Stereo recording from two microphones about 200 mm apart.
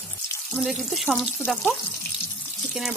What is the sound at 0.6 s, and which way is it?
Water, centre (ahead or behind).